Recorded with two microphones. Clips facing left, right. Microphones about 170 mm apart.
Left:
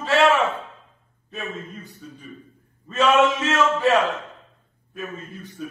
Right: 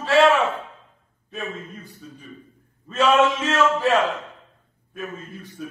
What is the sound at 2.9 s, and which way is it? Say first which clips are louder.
A man's voice: even; centre (ahead or behind).